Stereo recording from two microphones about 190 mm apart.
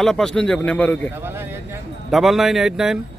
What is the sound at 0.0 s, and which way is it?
A man's voice, 5° left (ahead or behind).